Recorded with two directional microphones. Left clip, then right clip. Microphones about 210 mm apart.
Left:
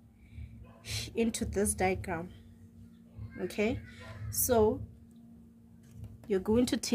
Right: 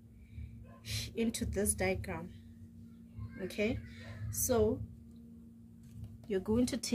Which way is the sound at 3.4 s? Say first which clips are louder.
Left 3 dB; 50° left (ahead or behind).